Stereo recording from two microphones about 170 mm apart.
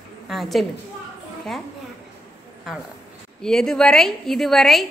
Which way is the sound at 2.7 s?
Centre (ahead or behind).